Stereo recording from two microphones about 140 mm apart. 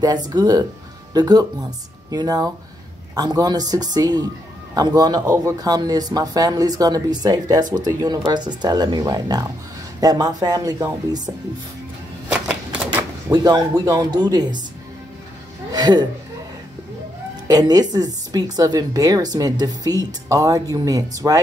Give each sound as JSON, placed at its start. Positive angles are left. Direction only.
{"t": 0.3, "sound": "speech", "side_deg": -30}
{"t": 12.3, "sound": "a sound", "side_deg": -10}
{"t": 13.3, "sound": "speech", "side_deg": -25}
{"t": 15.7, "sound": "speech", "side_deg": -30}
{"t": 17.5, "sound": "speech", "side_deg": -25}